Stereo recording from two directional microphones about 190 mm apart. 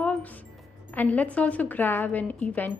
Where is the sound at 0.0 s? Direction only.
5° left (ahead or behind).